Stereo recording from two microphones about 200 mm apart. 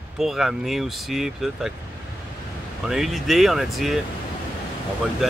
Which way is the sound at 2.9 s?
Centre (ahead or behind).